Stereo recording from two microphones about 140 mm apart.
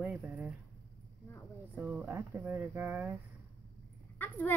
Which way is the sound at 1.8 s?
10° right (ahead or behind).